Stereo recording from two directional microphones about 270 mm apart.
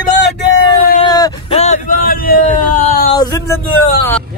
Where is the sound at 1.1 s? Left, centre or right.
Centre.